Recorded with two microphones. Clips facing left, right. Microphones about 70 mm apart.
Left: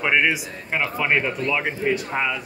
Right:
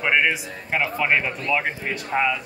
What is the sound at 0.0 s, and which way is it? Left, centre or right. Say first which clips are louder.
Speech: even; centre.